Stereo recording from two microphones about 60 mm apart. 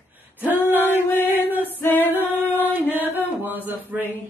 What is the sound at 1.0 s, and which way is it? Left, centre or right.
Chant, left.